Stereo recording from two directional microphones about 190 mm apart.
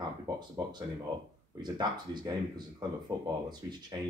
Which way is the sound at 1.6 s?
20° right (ahead or behind).